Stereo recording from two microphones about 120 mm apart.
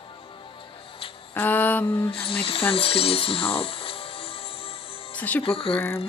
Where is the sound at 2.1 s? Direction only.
50° left (ahead or behind).